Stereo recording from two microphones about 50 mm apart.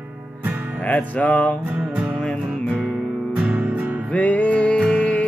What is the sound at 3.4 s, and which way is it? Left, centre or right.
Music, right.